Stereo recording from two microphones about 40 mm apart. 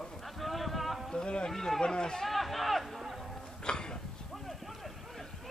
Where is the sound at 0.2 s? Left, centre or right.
Centre.